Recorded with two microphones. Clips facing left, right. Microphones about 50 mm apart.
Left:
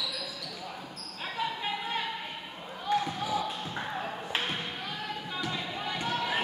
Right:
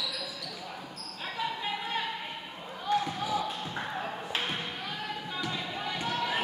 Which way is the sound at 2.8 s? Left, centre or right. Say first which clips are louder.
Even; centre.